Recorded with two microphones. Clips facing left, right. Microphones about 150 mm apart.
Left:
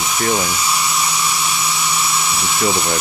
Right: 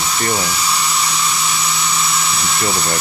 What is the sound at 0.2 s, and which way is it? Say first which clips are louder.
Speech: left 2 dB; 10° left (ahead or behind).